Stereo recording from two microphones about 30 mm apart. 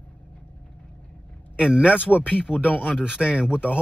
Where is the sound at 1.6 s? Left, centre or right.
Right.